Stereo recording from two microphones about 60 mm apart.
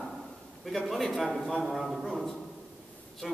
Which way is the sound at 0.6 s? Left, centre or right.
Centre.